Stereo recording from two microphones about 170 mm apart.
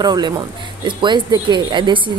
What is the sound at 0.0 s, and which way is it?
Speech, 25° right (ahead or behind).